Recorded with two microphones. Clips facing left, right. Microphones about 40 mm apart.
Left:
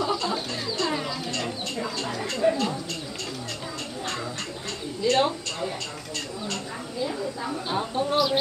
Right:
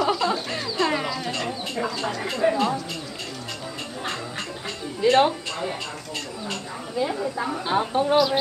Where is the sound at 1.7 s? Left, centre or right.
Centre.